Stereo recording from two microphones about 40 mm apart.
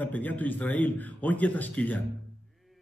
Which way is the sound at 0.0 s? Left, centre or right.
Left.